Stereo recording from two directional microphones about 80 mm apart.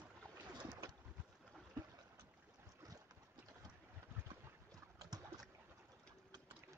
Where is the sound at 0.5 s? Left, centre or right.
Right.